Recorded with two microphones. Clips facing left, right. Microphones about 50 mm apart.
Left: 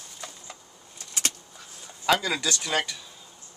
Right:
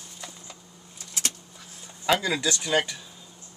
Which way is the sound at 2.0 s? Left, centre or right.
Centre.